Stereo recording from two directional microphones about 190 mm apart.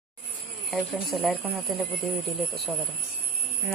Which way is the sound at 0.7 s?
Centre (ahead or behind).